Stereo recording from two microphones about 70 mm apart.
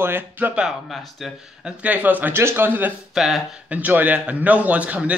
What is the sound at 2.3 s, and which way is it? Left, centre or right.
Speech, right.